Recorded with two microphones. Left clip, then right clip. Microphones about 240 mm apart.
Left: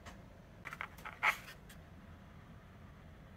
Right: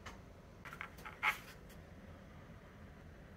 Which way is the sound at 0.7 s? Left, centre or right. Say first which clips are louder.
Left 3 dB; centre.